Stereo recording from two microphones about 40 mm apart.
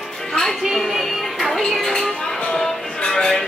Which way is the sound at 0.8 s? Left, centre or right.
Centre.